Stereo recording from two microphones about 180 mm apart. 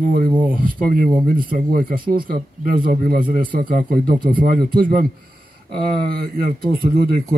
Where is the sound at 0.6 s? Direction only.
50° right (ahead or behind).